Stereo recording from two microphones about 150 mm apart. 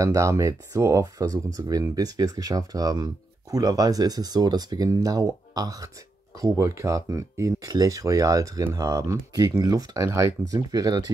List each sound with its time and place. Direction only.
0.0 s speech: 20° right (ahead or behind)